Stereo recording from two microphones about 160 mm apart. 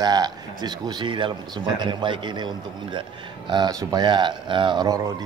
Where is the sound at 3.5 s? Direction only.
25° right (ahead or behind).